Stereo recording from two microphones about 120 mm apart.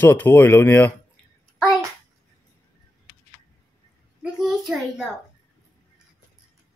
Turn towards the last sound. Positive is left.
turn(degrees=0)  # may be behind; listen again after turning